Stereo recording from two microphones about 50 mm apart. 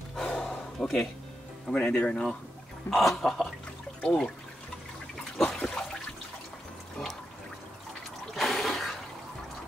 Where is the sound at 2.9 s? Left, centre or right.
Centre.